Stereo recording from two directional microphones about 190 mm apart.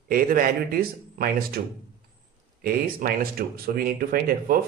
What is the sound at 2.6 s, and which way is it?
Speech, 50° right (ahead or behind).